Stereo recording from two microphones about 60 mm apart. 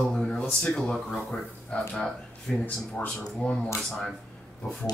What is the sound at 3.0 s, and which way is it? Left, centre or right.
Speech, left.